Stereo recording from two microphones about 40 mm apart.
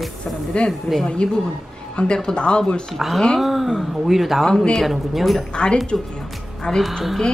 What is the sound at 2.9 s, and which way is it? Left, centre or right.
Speech, centre.